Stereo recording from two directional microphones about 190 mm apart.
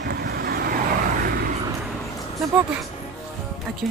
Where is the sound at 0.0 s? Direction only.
55° right (ahead or behind).